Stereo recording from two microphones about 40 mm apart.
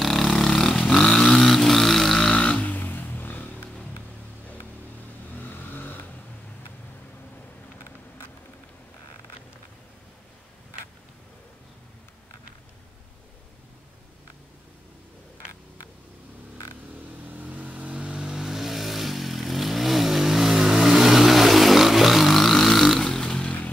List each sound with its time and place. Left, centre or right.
0.0 s vehicle: centre
2.3 s music: left
5.7 s a sound: left
17.3 s vehicle: right
17.9 s vehicle: right; by 22.9 s centre
22.9 s vehicle: centre